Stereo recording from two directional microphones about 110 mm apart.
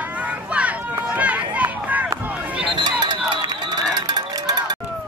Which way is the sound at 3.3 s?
40° right (ahead or behind).